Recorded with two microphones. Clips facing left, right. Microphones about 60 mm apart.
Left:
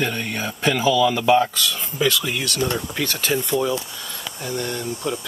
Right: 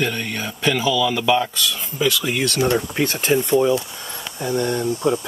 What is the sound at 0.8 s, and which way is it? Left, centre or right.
Speech, left.